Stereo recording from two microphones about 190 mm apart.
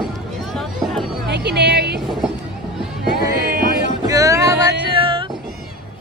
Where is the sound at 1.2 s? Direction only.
60° right (ahead or behind).